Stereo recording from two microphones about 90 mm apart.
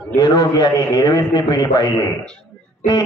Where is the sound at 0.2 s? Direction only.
50° left (ahead or behind).